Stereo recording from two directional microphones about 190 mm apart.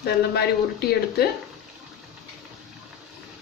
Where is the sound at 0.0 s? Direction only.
55° left (ahead or behind).